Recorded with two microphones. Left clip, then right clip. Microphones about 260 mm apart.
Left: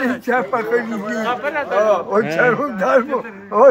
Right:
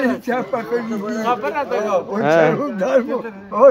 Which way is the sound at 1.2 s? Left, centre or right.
Right.